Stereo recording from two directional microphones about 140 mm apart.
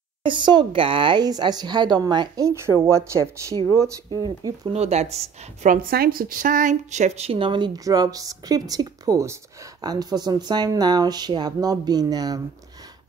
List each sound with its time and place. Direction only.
0.2 s a woman's voice: 35° right (ahead or behind)
4.7 s speech: 50° right (ahead or behind)
5.7 s a woman's voice: 90° right; by 12.4 s 30° right (ahead or behind)